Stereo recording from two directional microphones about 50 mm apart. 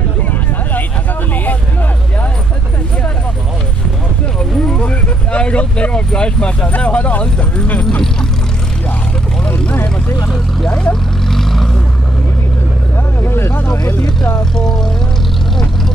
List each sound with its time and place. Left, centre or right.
1.3 s vehicle: left
4.4 s vehicle: left
9.8 s vehicle: left
10.7 s speech: centre
11.2 s vehicle: centre
13.2 s vehicle: left
14.6 s speech: centre